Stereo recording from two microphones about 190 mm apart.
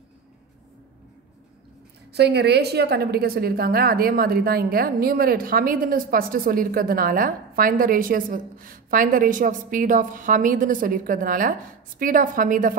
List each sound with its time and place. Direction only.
2.1 s a woman's voice: 60° right (ahead or behind); by 12.7 s 45° right (ahead or behind)